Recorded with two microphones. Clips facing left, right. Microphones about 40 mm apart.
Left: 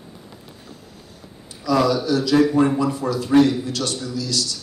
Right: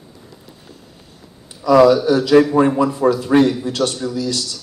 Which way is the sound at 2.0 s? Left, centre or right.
Right.